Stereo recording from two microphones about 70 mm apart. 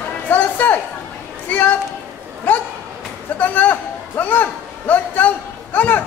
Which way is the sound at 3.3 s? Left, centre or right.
Left.